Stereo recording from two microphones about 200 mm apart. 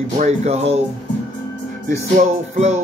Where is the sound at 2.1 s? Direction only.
35° right (ahead or behind).